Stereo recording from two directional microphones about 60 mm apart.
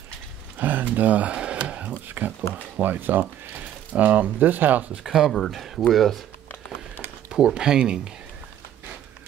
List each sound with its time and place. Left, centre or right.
0.6 s speech: right
2.0 s speech: right
5.0 s speech: centre
7.2 s speech: centre